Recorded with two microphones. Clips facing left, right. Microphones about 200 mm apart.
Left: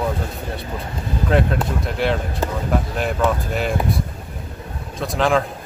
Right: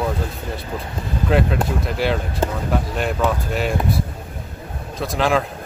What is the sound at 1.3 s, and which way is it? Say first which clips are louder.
A man's voice: even; centre (ahead or behind).